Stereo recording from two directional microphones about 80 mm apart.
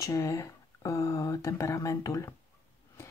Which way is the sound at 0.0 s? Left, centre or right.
Left.